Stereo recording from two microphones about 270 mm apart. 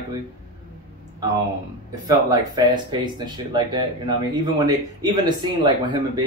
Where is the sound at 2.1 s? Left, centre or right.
Centre.